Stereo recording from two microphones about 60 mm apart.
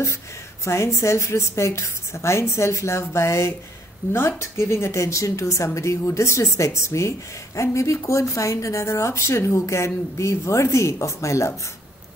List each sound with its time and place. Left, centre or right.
0.7 s a woman's voice: left